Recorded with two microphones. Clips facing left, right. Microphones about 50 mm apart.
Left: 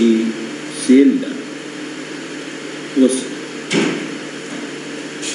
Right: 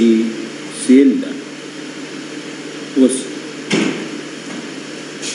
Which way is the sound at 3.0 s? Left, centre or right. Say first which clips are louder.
Right 1 dB; centre.